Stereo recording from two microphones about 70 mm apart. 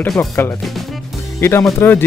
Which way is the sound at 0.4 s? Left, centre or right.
Left.